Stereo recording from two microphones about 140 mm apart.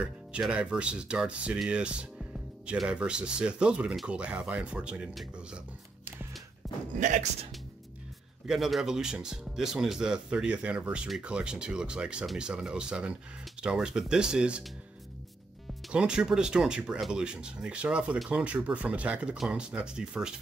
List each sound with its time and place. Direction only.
0.0 s speech: 10° right (ahead or behind)
6.6 s a sound: centre (ahead or behind)
7.0 s speech: 60° right (ahead or behind)
8.5 s speech: centre (ahead or behind)
15.9 s speech: 5° right (ahead or behind)